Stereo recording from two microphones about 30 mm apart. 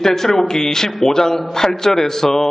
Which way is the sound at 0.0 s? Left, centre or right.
Centre.